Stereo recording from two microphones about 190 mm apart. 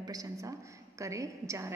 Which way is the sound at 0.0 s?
20° right (ahead or behind).